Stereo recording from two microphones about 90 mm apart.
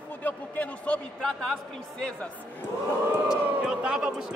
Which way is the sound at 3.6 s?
10° right (ahead or behind).